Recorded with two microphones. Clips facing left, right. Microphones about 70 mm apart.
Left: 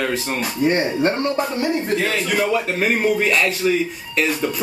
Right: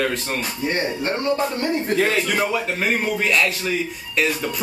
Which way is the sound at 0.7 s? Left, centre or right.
Left.